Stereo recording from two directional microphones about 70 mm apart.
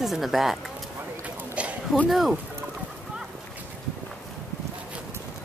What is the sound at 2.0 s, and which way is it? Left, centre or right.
Speech, centre.